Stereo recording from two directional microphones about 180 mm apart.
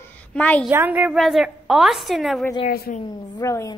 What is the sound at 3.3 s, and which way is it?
Speech, 15° left (ahead or behind).